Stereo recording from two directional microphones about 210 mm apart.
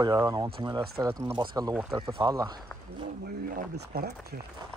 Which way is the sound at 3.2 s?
45° right (ahead or behind).